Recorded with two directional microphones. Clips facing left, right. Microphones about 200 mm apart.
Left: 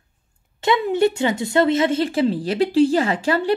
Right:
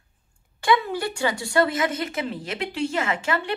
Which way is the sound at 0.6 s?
25° left (ahead or behind).